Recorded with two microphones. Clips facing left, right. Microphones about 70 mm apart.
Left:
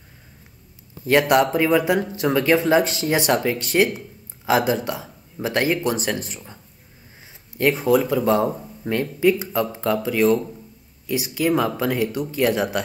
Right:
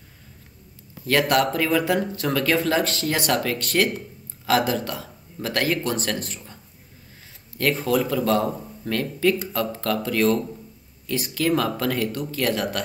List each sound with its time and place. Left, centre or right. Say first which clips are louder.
1.0 s speech: left 3 dB; centre